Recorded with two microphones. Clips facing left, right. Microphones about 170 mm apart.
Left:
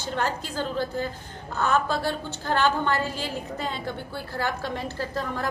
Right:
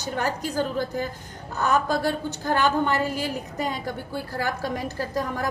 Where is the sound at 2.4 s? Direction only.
15° right (ahead or behind).